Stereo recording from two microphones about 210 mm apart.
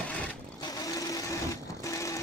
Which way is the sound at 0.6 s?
15° left (ahead or behind).